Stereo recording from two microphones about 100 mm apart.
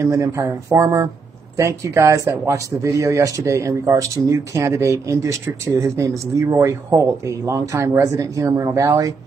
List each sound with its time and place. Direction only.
0.0 s speech: 30° right (ahead or behind)